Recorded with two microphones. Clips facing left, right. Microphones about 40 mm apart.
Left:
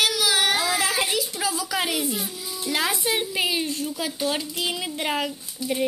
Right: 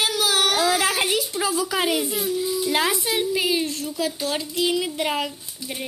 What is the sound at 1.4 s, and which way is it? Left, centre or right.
Speech, centre.